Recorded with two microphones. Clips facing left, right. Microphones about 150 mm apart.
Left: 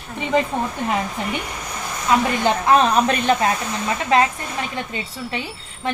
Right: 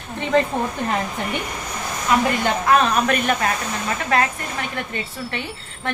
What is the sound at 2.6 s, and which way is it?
Speech, 30° left (ahead or behind).